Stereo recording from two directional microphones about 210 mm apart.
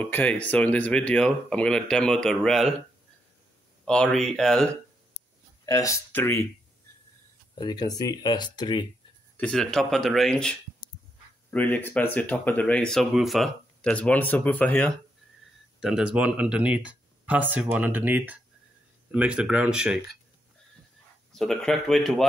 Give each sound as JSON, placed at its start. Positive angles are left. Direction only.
{"t": 0.0, "sound": "speech", "side_deg": 5}
{"t": 3.8, "sound": "speech", "side_deg": 5}
{"t": 5.7, "sound": "speech", "side_deg": 15}
{"t": 7.5, "sound": "speech", "side_deg": 20}
{"t": 9.4, "sound": "speech", "side_deg": 5}
{"t": 11.5, "sound": "speech", "side_deg": 10}
{"t": 21.3, "sound": "speech", "side_deg": 0}